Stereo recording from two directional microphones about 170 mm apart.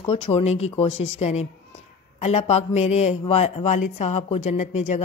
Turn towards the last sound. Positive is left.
turn(degrees=40)  # may be behind; listen again after turning